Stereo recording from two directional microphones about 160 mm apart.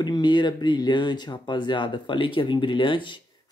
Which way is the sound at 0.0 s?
30° left (ahead or behind).